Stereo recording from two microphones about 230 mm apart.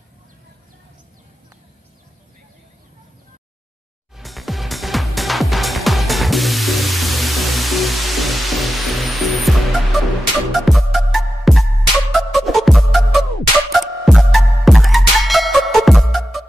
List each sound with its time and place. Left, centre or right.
4.2 s music: centre